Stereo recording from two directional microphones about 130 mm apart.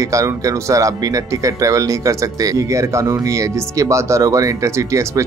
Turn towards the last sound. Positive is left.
turn(degrees=-25)  # may be behind; listen again after turning